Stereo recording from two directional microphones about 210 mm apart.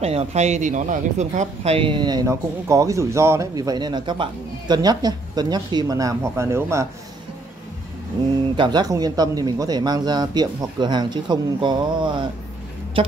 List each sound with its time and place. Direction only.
0.0 s speech: 30° right (ahead or behind); by 6.9 s 15° right (ahead or behind)
8.5 s speech: 20° right (ahead or behind)